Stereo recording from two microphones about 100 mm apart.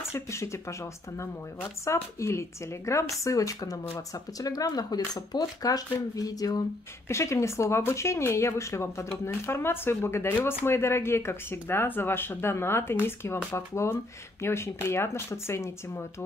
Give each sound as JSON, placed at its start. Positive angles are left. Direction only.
{"t": 0.0, "sound": "speech", "side_deg": 30}